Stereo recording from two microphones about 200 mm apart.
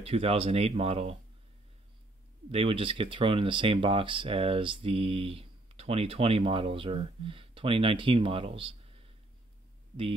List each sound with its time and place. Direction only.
0.0 s speech: 30° right (ahead or behind)
2.5 s speech: 30° right (ahead or behind)